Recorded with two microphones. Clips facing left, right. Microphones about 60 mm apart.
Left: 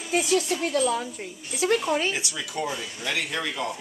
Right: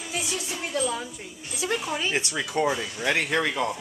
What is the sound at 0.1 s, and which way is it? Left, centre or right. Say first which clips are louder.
A woman's voice: left 9 dB; left.